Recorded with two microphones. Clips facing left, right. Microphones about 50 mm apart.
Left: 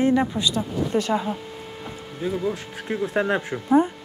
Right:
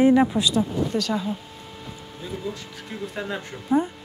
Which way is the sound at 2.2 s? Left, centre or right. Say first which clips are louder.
Left 7 dB; left.